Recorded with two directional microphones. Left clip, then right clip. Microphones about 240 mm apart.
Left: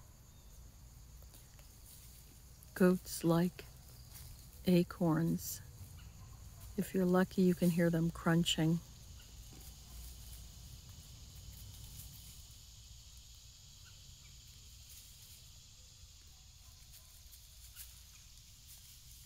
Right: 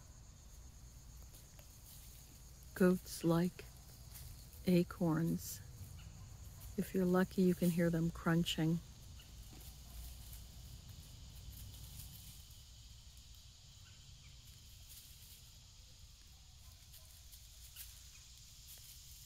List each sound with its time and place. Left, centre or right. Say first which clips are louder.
2.7 s speech: left 2 dB; centre
4.6 s speech: left 3 dB; centre
6.8 s speech: left 2 dB; centre